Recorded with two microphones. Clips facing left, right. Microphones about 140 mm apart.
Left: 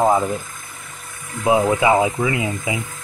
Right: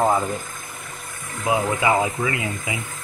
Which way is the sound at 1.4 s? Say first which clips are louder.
Left 5 dB; 25° left (ahead or behind).